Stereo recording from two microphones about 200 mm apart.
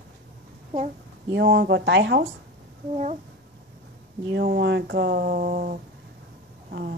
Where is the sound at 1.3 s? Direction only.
60° right (ahead or behind).